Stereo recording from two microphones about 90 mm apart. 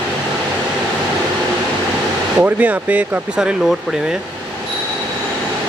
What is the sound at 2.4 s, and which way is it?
Speech, 15° right (ahead or behind).